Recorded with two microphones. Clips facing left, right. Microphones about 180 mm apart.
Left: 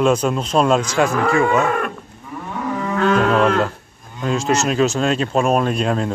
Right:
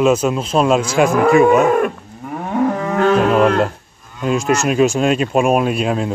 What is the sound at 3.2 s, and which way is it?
Livestock, 10° right (ahead or behind).